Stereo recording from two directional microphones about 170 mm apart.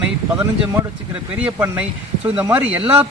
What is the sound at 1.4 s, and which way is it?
Speech, 10° right (ahead or behind).